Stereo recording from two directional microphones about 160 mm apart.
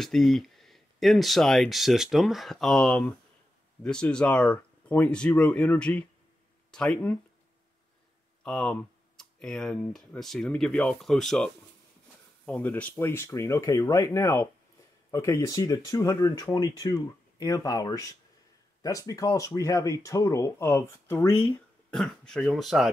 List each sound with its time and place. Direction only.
0.0 s speech: centre (ahead or behind)
8.5 s speech: 5° left (ahead or behind)
21.9 s speech: 5° left (ahead or behind)